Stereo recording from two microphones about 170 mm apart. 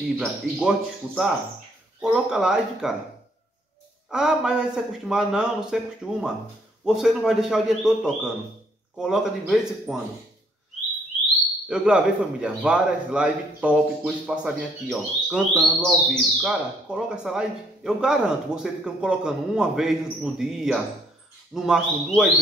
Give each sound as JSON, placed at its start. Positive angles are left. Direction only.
{"t": 0.2, "sound": "a man's voice", "side_deg": 0}
{"t": 4.1, "sound": "a man's voice", "side_deg": -5}
{"t": 11.6, "sound": "a man's voice", "side_deg": -5}